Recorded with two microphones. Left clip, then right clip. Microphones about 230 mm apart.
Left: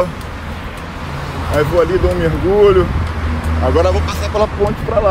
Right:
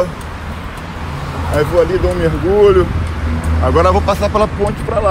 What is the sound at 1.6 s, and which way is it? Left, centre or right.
Speech, right.